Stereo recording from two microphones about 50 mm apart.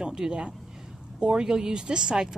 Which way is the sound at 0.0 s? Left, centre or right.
Centre.